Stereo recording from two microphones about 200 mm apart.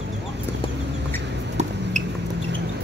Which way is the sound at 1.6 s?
35° right (ahead or behind).